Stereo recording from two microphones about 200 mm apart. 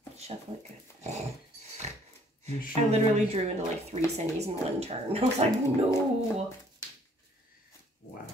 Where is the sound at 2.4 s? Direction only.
30° right (ahead or behind).